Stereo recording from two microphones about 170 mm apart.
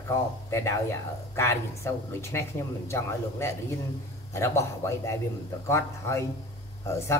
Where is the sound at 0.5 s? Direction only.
15° left (ahead or behind).